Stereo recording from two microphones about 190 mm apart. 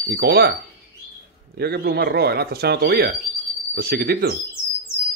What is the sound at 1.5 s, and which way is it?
A man's voice, 55° right (ahead or behind).